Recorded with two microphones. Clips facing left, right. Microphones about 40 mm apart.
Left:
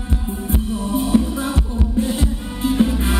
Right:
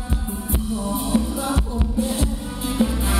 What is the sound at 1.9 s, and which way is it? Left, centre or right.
Music, left.